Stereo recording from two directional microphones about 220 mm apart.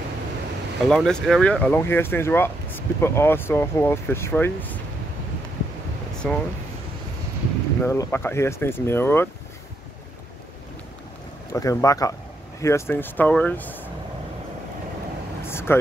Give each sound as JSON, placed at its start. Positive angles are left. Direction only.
{"t": 0.8, "sound": "speech", "side_deg": 5}
{"t": 6.2, "sound": "speech", "side_deg": 5}
{"t": 7.8, "sound": "speech", "side_deg": 10}
{"t": 11.5, "sound": "speech", "side_deg": 15}
{"t": 15.4, "sound": "vehicle", "side_deg": 10}